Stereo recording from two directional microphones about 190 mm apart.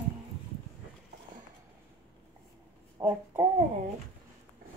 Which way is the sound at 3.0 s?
15° right (ahead or behind).